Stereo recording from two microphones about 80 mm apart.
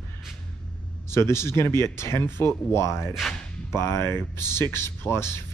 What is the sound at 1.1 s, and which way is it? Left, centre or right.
Speech, left.